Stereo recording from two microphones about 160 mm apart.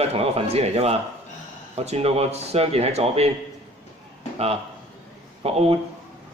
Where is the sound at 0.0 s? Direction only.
40° right (ahead or behind).